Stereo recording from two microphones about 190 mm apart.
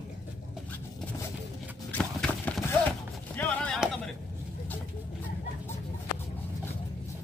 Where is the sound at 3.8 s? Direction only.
Centre (ahead or behind).